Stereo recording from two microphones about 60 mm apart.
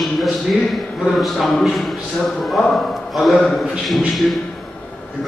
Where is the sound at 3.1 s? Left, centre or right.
Centre.